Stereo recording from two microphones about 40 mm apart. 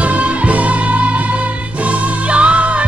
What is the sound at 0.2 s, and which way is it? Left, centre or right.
Music, right.